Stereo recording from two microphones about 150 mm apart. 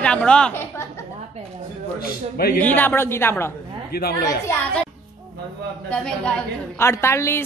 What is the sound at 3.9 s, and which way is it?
Speech, 90° left.